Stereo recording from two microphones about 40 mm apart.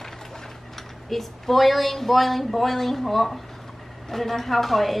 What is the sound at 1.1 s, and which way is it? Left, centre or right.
Speech, centre.